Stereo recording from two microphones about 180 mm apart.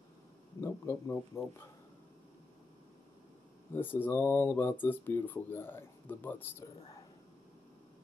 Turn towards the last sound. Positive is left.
turn(degrees=10)  # may be behind; listen again after turning